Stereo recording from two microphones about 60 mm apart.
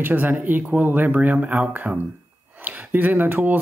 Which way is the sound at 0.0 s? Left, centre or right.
Right.